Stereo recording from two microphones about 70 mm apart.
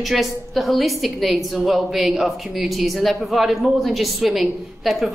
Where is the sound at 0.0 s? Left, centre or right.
Centre.